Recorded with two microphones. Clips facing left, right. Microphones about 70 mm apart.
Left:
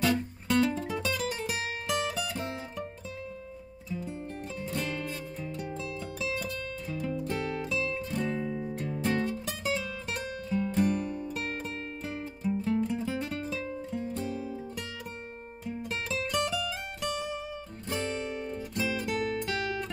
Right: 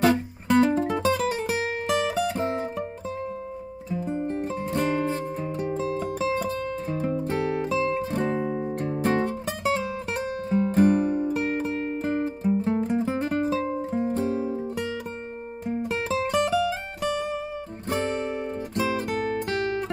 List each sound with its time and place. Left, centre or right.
0.0 s music: right
0.8 s music: right
4.0 s music: right